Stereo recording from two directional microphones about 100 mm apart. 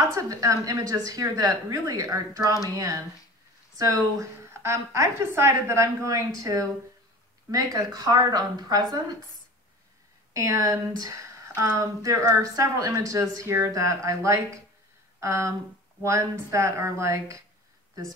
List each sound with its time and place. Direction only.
0.0 s speech: 30° right (ahead or behind)
10.3 s speech: 35° right (ahead or behind)